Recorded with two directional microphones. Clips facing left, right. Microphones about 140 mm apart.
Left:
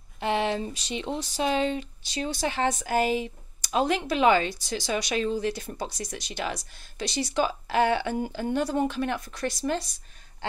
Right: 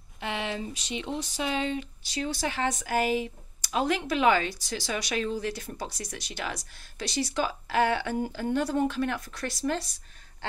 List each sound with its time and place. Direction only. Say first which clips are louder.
0.2 s speech: left 6 dB; 35° left (ahead or behind)
2.0 s speech: left 2 dB; 25° left (ahead or behind)